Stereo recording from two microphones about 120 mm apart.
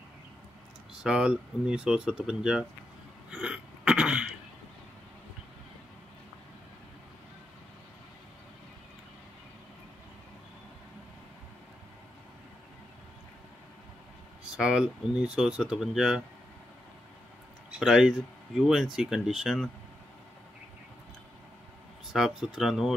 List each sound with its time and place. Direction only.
1.0 s speech: 5° right (ahead or behind)
3.3 s a sound: 5° right (ahead or behind)
14.6 s speech: 5° right (ahead or behind)
17.6 s speech: 5° right (ahead or behind)
22.1 s speech: centre (ahead or behind)